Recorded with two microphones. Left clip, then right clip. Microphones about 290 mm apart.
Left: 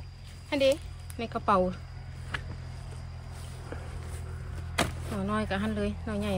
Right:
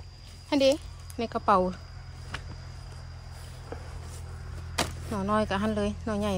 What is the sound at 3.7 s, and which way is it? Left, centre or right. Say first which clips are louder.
Vehicle: right 1 dB; right.